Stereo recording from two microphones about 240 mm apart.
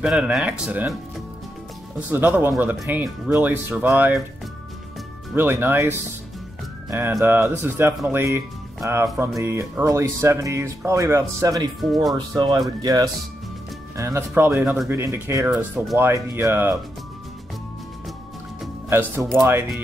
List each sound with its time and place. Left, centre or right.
0.0 s speech: centre
2.0 s speech: centre
5.3 s speech: centre
9.4 s speech: centre
16.1 s speech: centre
18.9 s speech: centre